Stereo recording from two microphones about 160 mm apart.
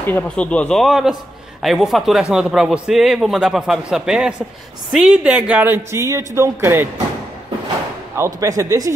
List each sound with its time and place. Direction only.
0.0 s speech: 10° left (ahead or behind); by 6.9 s 15° right (ahead or behind)
8.2 s speech: 20° right (ahead or behind)